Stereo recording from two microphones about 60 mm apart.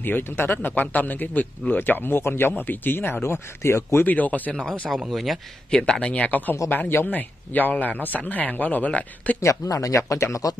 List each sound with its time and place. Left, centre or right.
0.0 s speech: left
4.0 s a man's voice: left
4.9 s speech: centre
5.7 s a man's voice: centre
9.4 s speech: left